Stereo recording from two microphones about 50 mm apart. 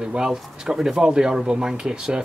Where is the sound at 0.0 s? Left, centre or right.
Centre.